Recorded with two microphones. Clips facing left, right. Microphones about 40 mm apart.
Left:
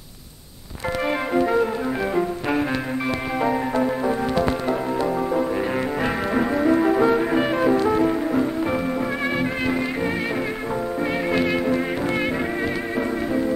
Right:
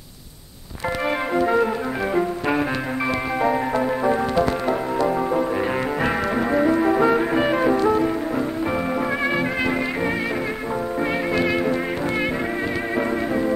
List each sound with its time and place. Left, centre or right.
1.3 s music: centre
3.8 s music: centre
6.7 s music: centre
11.3 s music: centre
12.9 s music: centre